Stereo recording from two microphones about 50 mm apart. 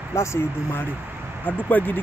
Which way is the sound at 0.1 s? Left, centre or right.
Left.